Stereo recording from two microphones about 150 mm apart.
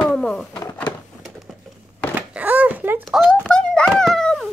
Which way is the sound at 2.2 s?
10° right (ahead or behind).